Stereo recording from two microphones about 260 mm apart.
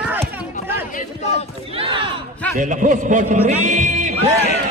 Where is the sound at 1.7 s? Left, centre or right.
Centre.